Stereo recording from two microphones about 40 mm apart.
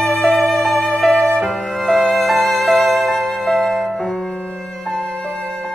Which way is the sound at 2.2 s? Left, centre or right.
Centre.